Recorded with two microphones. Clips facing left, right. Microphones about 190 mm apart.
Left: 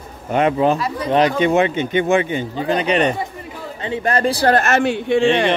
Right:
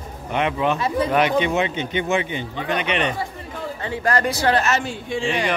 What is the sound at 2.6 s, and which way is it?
Speech, 35° left (ahead or behind).